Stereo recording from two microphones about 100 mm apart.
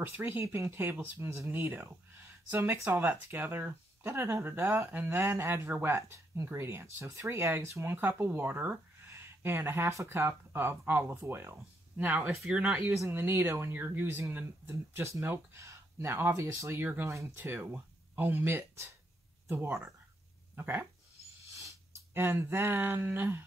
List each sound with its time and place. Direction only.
0.0 s speech: 20° right (ahead or behind)
13.0 s speech: 20° right (ahead or behind)
22.1 s speech: 20° right (ahead or behind)